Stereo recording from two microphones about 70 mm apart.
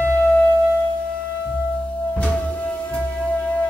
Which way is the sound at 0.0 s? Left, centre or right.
Centre.